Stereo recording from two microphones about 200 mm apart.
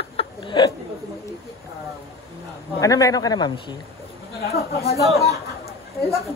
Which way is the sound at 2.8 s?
15° left (ahead or behind).